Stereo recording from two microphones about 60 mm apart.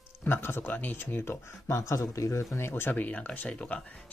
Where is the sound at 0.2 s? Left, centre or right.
Left.